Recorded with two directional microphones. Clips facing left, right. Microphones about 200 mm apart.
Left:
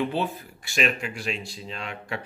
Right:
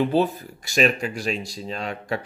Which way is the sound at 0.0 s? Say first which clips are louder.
Right 6 dB; 40° right (ahead or behind).